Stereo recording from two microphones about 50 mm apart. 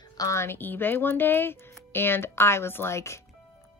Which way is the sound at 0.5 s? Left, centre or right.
Left.